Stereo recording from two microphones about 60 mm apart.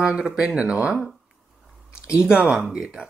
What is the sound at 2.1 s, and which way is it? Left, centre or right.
Speech, centre.